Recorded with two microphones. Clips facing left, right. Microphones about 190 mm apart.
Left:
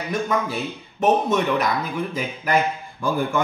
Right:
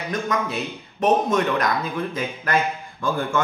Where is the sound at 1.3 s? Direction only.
10° left (ahead or behind).